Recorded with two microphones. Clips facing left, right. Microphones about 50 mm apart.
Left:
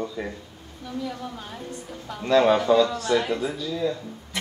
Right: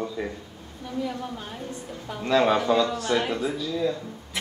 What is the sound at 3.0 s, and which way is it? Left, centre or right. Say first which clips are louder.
Speech: left 2 dB; centre.